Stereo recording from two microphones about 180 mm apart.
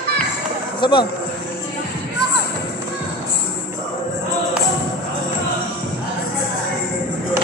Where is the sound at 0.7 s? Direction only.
25° left (ahead or behind).